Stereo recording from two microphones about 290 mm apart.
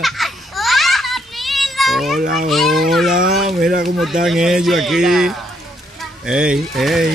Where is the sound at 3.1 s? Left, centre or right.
Right.